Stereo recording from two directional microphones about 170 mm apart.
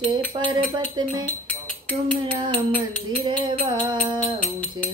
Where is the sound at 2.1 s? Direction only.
30° right (ahead or behind).